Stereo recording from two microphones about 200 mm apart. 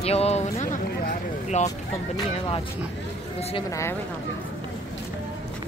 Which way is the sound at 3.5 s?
15° left (ahead or behind).